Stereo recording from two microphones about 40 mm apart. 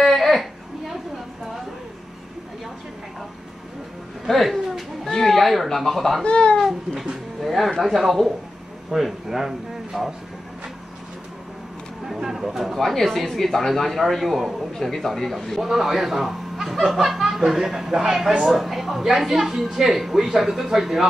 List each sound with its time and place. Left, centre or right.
0.0 s a sound: centre
4.3 s a sound: centre
5.1 s speech: centre
6.2 s speech: left
7.4 s speech: centre
12.1 s speech: centre
15.7 s speech: centre